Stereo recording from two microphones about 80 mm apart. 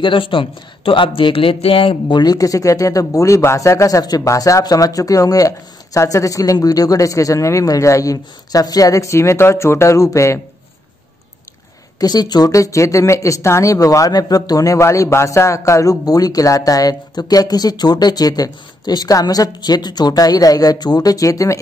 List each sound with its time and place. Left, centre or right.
0.0 s speech: left
12.0 s speech: left